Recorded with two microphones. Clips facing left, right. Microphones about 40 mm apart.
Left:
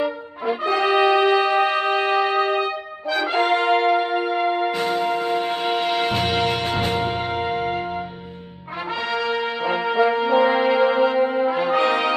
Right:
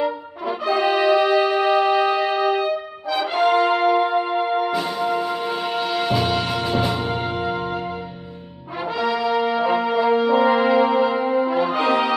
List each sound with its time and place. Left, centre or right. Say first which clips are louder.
0.5 s music: even; left
3.1 s brass instrument: right 1 dB; left
4.7 s music: even; left
9.0 s brass instrument: right 4 dB; left